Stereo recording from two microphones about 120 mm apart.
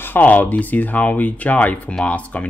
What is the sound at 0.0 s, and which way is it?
Speech, 15° left (ahead or behind).